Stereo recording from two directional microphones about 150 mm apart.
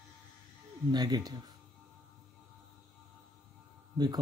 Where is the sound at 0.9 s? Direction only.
25° right (ahead or behind).